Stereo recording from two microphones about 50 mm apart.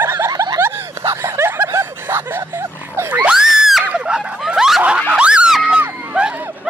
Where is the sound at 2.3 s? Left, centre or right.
Right.